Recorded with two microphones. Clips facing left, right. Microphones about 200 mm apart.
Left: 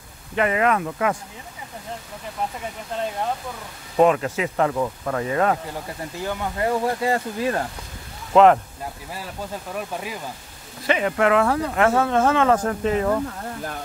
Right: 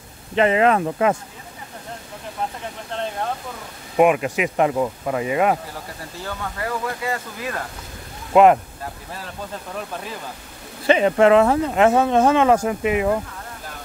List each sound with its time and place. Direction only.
0.4 s speech: 25° right (ahead or behind)
3.9 s speech: 15° right (ahead or behind)
6.2 s speech: 25° left (ahead or behind)
8.3 s speech: 10° right (ahead or behind)
10.9 s speech: 25° right (ahead or behind)